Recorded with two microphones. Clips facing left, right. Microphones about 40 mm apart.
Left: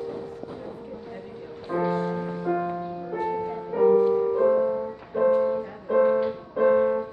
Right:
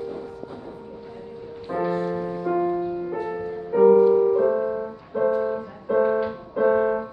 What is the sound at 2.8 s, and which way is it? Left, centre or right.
Music, centre.